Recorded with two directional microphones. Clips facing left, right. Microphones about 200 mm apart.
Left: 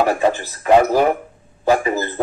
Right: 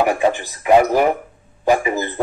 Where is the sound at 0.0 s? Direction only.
15° right (ahead or behind).